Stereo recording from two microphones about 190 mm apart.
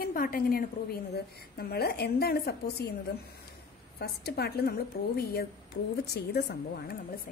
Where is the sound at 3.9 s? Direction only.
55° left (ahead or behind).